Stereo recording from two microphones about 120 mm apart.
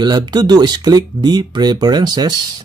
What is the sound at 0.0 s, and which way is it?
Speech, 35° right (ahead or behind).